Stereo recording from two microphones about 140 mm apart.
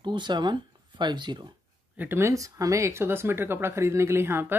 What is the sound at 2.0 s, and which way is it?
Speech, 15° right (ahead or behind).